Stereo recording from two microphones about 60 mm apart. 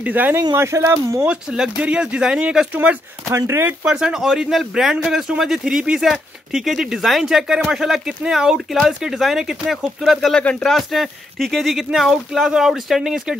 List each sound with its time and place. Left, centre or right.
0.0 s speech: right
0.6 s speech: right
1.2 s speech: centre
2.7 s speech: right
3.3 s speech: right
3.8 s speech: centre
10.4 s speech: centre
10.7 s speech: centre